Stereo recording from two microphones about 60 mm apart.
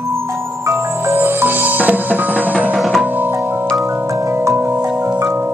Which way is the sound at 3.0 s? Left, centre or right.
Right.